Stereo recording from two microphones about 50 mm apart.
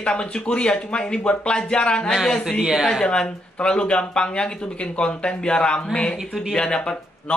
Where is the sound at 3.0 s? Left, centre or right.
Centre.